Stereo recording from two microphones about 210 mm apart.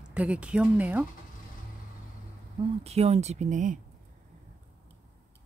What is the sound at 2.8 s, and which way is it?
Speech, 30° right (ahead or behind).